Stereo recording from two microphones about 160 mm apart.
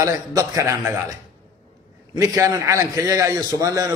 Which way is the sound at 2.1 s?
20° right (ahead or behind).